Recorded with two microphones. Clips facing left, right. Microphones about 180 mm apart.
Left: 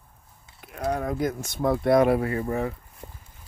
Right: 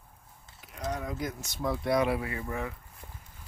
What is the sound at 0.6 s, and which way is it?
Speech, 60° left (ahead or behind).